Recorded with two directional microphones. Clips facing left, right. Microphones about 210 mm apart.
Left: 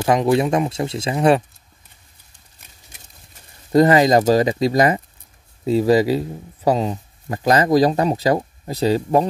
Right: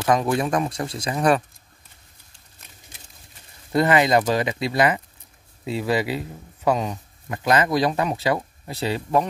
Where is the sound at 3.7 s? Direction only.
40° left (ahead or behind).